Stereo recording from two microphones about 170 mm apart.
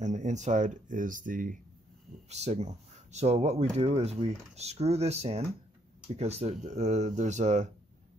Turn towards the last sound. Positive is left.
turn(degrees=-45)  # may be behind; listen again after turning